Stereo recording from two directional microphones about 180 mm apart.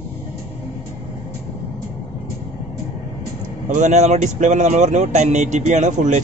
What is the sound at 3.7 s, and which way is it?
Speech, 40° right (ahead or behind).